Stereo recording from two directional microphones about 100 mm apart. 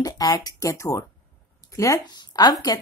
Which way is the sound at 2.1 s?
45° left (ahead or behind).